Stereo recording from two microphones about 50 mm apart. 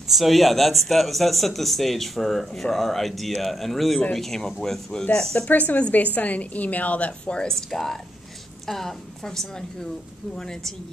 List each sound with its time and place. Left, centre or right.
0.0 s speech: centre
5.5 s a woman's voice: left
7.5 s speech: centre